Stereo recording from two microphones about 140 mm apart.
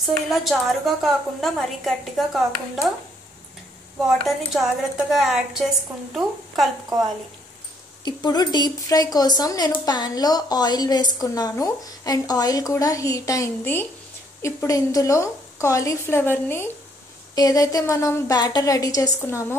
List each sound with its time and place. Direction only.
0.0 s a woman's voice: centre (ahead or behind)
4.5 s a woman's voice: centre (ahead or behind)
8.0 s a woman's voice: 30° left (ahead or behind)
17.4 s a woman's voice: 25° left (ahead or behind)